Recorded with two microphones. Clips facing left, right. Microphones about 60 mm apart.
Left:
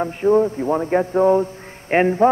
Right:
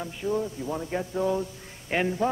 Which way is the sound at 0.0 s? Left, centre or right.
Left.